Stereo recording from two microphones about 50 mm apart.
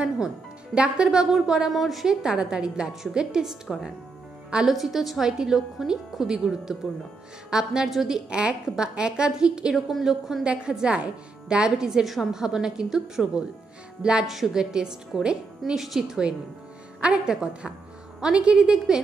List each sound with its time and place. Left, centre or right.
0.7 s a woman's voice: centre
2.0 s a woman's voice: centre
4.6 s a woman's voice: centre
8.3 s a woman's voice: centre
9.8 s a woman's voice: centre
10.4 s a woman's voice: centre